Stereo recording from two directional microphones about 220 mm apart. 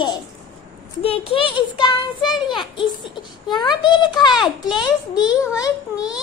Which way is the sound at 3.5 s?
20° left (ahead or behind).